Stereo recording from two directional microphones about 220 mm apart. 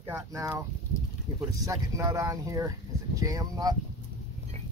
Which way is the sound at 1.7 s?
15° right (ahead or behind).